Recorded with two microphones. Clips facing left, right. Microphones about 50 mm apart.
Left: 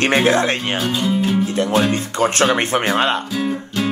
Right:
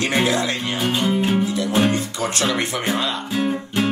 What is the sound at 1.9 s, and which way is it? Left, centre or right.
Speech, left.